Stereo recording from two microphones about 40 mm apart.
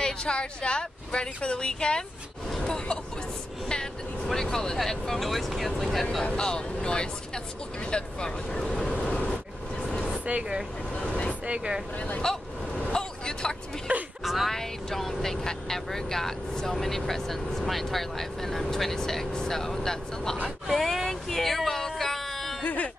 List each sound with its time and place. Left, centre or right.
0.0 s speech: left
2.5 s vehicle: centre
4.3 s speech: centre
6.2 s speech: left
10.3 s speech: right
10.9 s vehicle: left
11.4 s speech: right
12.2 s vehicle: centre
13.9 s vehicle: right
14.2 s speech: centre
14.5 s speech: centre
20.6 s a sound: centre
22.6 s a sound: left